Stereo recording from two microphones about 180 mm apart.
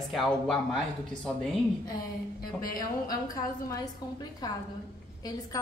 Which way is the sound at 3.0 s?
20° left (ahead or behind).